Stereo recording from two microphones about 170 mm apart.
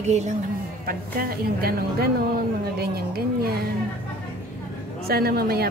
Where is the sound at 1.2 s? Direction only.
60° right (ahead or behind).